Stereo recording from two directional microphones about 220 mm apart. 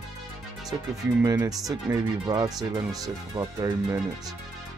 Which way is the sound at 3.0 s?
15° right (ahead or behind).